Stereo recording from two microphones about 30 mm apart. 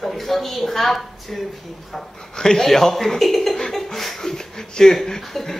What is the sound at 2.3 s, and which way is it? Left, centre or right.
A woman's voice, centre.